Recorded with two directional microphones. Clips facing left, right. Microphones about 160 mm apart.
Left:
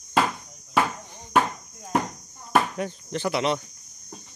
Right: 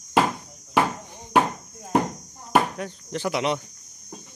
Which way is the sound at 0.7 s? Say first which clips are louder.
Right 2 dB; 15° right (ahead or behind).